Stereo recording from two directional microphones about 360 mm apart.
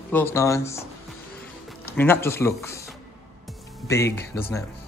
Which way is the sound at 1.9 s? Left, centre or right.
Centre.